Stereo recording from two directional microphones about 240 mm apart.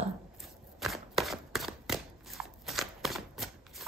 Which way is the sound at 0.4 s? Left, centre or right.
Centre.